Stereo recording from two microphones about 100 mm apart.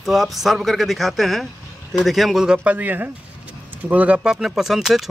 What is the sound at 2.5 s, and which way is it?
Speech, 15° right (ahead or behind).